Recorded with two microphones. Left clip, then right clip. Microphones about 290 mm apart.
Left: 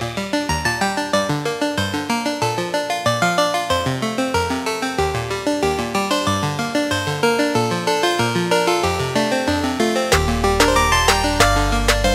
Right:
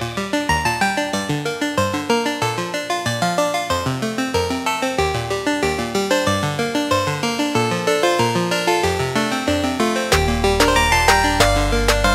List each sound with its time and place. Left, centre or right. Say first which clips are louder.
7.5 s music: right 1 dB; centre
10.0 s music: even; centre